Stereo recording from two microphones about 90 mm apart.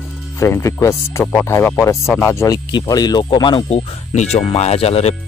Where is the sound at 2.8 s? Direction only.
45° left (ahead or behind).